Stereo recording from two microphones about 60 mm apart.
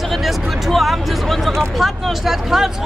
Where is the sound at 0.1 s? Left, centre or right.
Centre.